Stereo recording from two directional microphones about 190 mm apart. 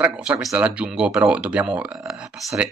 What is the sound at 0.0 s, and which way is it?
Speech, 5° right (ahead or behind).